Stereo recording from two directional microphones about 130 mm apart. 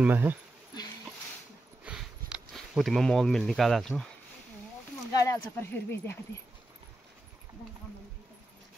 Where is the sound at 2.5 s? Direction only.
Centre (ahead or behind).